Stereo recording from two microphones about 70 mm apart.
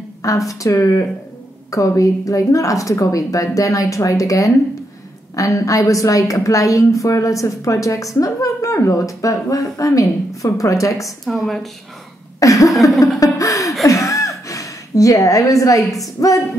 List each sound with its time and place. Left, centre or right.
0.2 s a woman's voice: left
11.1 s a woman's voice: centre
12.4 s a woman's voice: left
13.8 s a sound: left
15.8 s a woman's voice: centre